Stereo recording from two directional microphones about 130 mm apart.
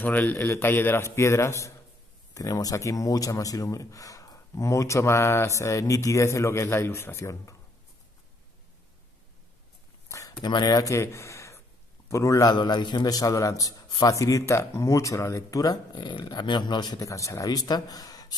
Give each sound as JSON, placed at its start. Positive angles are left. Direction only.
{"t": 0.0, "sound": "a man's voice", "side_deg": 15}
{"t": 10.0, "sound": "a sound", "side_deg": 25}
{"t": 10.4, "sound": "a man's voice", "side_deg": 35}